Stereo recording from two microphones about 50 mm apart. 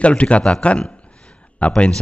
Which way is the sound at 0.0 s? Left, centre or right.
Left.